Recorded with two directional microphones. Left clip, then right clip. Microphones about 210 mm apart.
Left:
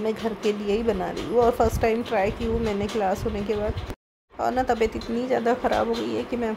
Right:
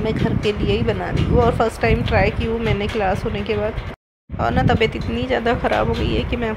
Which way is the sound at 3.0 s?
10° right (ahead or behind).